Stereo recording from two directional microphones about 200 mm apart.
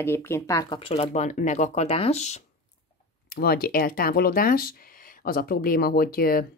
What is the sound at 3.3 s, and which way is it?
A woman's voice, 50° left (ahead or behind).